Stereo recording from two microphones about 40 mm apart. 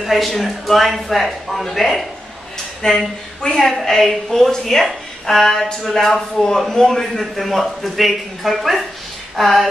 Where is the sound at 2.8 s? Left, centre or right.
Centre.